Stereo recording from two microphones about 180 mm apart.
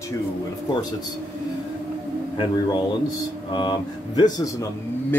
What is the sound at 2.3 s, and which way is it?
Speech, 25° left (ahead or behind).